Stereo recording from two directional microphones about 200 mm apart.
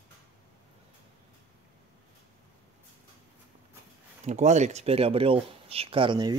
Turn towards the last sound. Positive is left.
turn(degrees=-25)  # may be behind; listen again after turning